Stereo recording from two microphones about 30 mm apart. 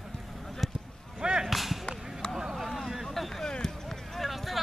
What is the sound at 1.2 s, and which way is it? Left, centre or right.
Whip, right.